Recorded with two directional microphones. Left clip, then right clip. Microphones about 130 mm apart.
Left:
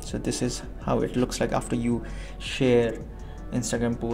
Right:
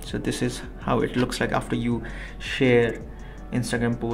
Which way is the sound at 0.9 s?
30° left (ahead or behind).